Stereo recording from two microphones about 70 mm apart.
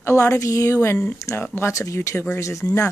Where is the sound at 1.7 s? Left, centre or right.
Left.